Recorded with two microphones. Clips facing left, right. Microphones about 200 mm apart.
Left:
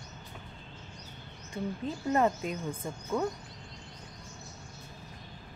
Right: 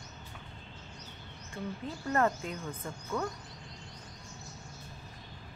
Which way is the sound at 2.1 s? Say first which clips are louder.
Left 2 dB; 15° left (ahead or behind).